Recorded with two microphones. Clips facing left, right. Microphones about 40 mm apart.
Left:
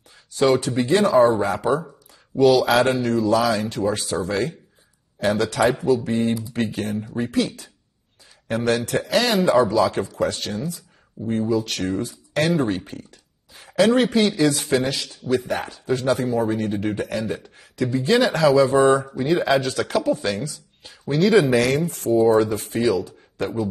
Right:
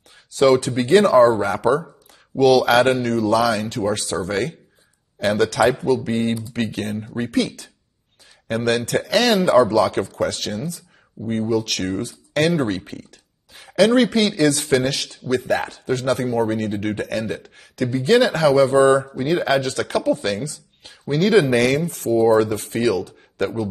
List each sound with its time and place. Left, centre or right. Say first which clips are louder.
0.3 s speech: right 3 dB; right
3.9 s speech: right 1 dB; right
11.2 s speech: even; right
11.5 s speech: right 1 dB; right
22.2 s speech: right 2 dB; right
23.0 s a sound: right 3 dB; right